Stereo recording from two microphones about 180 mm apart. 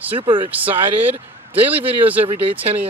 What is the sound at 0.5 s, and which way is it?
A man's voice, 10° right (ahead or behind).